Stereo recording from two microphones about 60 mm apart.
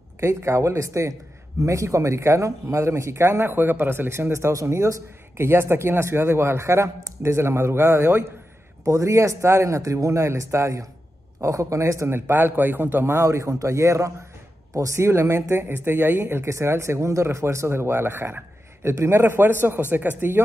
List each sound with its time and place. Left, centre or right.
0.2 s speech: right
4.1 s speech: right
5.4 s speech: right
8.8 s speech: right
9.8 s speech: right
12.1 s speech: right